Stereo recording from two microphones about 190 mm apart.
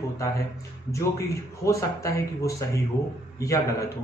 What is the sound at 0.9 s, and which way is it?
A man's voice, 15° left (ahead or behind).